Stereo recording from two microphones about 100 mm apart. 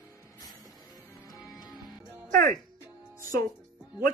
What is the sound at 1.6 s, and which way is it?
Music, 45° left (ahead or behind).